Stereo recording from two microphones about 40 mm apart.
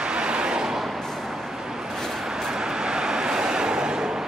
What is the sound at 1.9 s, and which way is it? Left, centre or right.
Vehicle, centre.